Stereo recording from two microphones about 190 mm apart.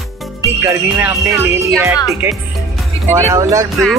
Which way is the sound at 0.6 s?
15° right (ahead or behind).